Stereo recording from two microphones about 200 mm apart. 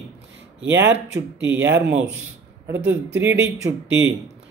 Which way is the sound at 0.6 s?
65° right (ahead or behind).